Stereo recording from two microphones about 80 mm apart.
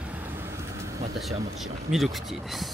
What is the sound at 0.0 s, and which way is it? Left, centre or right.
Vehicle, right.